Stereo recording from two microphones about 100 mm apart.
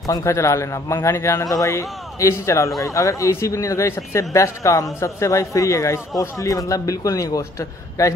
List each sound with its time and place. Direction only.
0.0 s a man's voice: 35° left (ahead or behind)